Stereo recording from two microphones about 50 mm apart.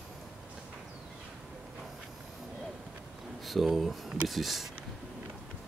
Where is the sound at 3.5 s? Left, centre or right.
Centre.